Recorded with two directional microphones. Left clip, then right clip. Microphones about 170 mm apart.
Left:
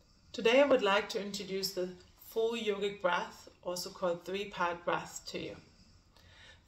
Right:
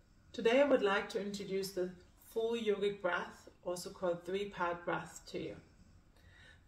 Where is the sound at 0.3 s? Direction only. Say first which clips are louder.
Left 3 dB; 5° right (ahead or behind).